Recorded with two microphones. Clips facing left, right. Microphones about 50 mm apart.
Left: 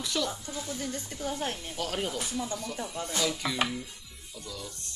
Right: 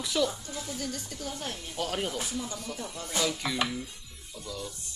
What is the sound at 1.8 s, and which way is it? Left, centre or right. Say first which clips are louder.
Speech: right 2 dB; centre.